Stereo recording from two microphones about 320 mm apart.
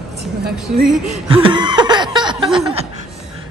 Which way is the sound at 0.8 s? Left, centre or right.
Centre.